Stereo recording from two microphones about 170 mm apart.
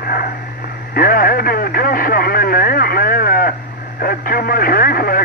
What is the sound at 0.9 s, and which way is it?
Speech, 60° left (ahead or behind).